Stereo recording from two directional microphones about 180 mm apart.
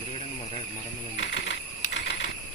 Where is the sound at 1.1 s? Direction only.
85° left.